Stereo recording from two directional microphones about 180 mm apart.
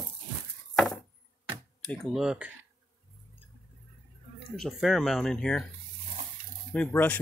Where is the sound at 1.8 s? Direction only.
5° left (ahead or behind).